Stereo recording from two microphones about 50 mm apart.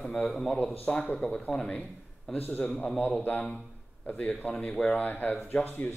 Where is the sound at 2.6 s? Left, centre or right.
Centre.